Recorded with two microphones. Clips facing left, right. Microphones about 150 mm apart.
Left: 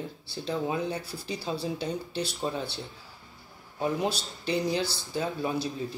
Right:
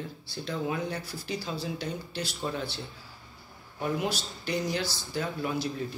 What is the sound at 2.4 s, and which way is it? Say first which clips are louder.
Speech: left 1 dB; 20° left (ahead or behind).